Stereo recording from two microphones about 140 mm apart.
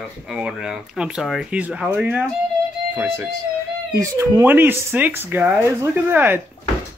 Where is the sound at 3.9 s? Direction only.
20° right (ahead or behind).